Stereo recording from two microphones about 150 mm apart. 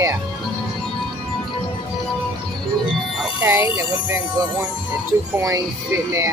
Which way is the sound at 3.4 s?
15° right (ahead or behind).